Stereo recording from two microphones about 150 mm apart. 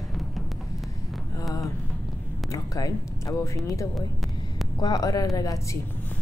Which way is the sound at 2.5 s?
20° left (ahead or behind).